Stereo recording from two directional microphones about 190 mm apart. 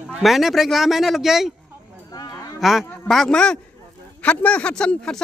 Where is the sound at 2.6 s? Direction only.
Centre (ahead or behind).